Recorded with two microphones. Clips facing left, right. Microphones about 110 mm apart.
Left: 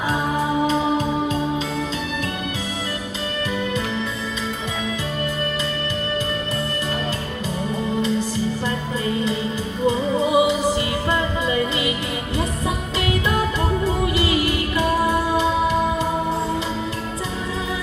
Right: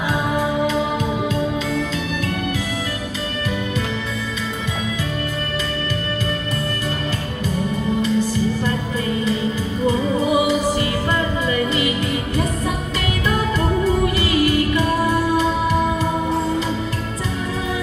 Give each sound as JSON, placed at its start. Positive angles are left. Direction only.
{"t": 9.8, "sound": "music", "side_deg": 25}
{"t": 14.0, "sound": "music", "side_deg": 20}